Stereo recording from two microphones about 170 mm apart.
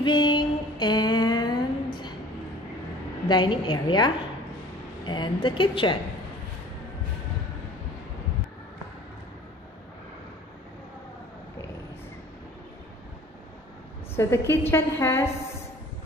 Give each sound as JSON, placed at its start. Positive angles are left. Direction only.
{"t": 0.0, "sound": "a sound", "side_deg": 25}
{"t": 3.3, "sound": "a woman's voice", "side_deg": 25}
{"t": 14.1, "sound": "a woman's voice", "side_deg": 15}